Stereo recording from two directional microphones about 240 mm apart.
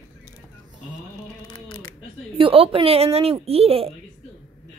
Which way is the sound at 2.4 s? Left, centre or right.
Right.